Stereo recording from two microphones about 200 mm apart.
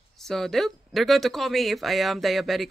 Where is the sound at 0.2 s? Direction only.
Centre (ahead or behind).